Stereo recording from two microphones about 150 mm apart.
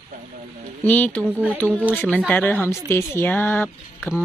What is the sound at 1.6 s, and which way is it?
Speech, 10° left (ahead or behind).